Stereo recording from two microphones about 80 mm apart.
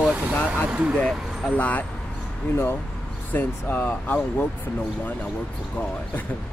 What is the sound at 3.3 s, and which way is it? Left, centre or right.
Speech, left.